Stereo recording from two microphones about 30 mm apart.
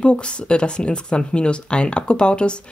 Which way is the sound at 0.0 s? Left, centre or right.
Left.